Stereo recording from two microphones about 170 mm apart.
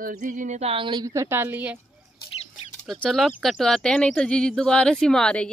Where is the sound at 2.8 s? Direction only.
5° left (ahead or behind).